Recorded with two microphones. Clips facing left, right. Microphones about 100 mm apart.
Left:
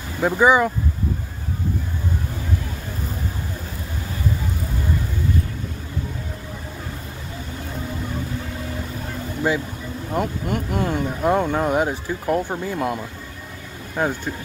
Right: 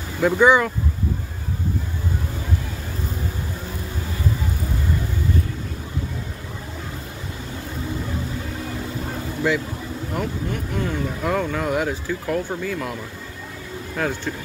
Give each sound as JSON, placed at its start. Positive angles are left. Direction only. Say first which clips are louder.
{"t": 0.2, "sound": "speech", "louder": "even", "side_deg": 15}
{"t": 10.1, "sound": "speech", "louder": "left 4 dB", "side_deg": 25}
{"t": 11.9, "sound": "speech", "louder": "left 2 dB", "side_deg": 20}